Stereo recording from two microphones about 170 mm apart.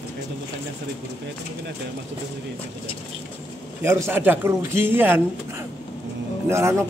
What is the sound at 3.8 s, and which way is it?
A man's voice, 15° right (ahead or behind).